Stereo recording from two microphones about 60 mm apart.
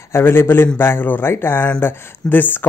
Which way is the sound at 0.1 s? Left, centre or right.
Left.